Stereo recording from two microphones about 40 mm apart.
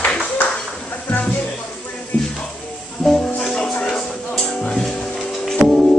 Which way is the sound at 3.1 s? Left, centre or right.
Centre.